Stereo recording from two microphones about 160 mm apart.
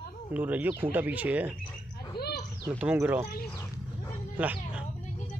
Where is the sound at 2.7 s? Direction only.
10° right (ahead or behind).